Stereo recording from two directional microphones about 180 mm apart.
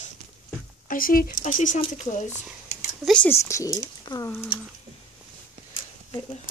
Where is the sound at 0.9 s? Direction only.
50° left (ahead or behind).